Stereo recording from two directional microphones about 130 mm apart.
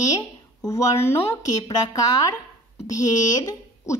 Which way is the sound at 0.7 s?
20° left (ahead or behind).